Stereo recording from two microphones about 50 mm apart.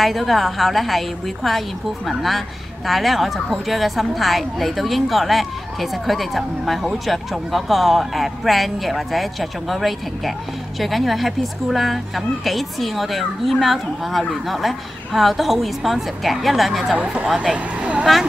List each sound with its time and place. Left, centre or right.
0.0 s a woman's voice: centre
16.9 s speech: centre